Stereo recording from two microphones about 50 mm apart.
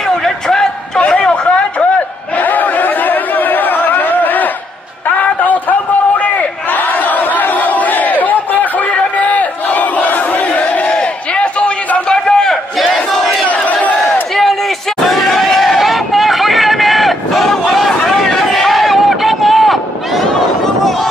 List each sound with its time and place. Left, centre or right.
0.2 s a sound: centre
2.3 s chatter: left
5.0 s crowd: left
10.6 s battle cry: left
12.1 s a sound: centre
12.7 s battle cry: centre
13.5 s crowd: left
14.3 s battle cry: centre
15.0 s hubbub: centre